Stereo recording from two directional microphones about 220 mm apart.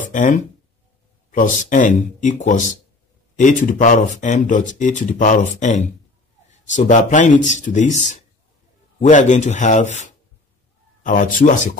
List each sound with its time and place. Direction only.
0.1 s speech: 35° left (ahead or behind)